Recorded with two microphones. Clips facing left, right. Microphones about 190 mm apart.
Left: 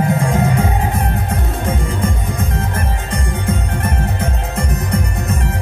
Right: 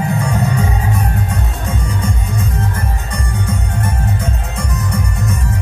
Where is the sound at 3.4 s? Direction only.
55° left (ahead or behind).